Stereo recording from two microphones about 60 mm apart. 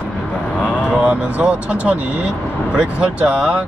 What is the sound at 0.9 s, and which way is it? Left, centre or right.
Speech, right.